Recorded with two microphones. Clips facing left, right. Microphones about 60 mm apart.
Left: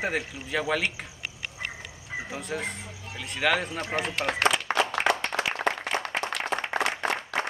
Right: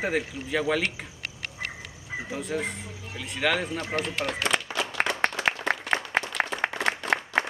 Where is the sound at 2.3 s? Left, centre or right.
Centre.